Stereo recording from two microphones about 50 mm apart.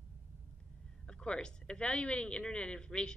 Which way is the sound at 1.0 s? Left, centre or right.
Centre.